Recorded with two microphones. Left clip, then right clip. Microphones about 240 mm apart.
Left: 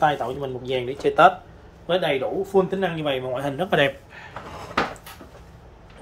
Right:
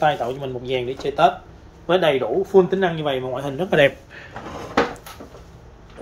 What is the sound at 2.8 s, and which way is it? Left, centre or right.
Speech, centre.